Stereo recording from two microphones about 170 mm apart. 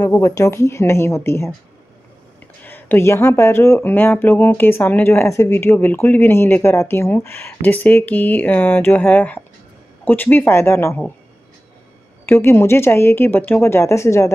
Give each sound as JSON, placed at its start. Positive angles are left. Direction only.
{"t": 0.0, "sound": "speech", "side_deg": 15}
{"t": 2.6, "sound": "speech", "side_deg": 10}
{"t": 12.3, "sound": "speech", "side_deg": 15}